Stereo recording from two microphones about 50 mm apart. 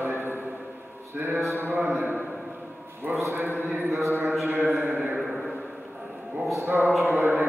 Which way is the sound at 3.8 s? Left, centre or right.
Right.